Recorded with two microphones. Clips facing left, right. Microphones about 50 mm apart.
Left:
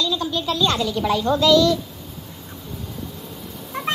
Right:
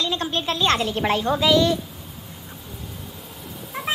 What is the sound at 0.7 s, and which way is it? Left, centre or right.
Speech, right.